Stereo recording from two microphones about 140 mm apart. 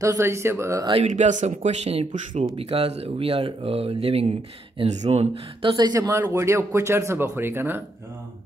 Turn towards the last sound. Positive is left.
turn(degrees=-15)  # may be behind; listen again after turning